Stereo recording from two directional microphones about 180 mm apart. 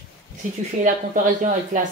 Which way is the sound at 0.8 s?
45° right (ahead or behind).